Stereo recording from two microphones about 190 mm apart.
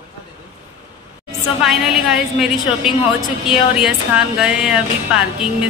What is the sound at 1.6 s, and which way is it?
Speech, centre (ahead or behind).